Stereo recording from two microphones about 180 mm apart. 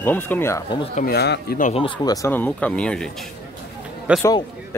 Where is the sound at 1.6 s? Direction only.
35° left (ahead or behind).